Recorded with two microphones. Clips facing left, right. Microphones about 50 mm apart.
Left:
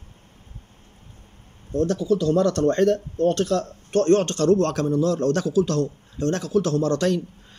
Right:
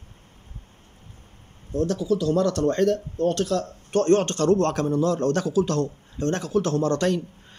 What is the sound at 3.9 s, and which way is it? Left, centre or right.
A man's voice, right.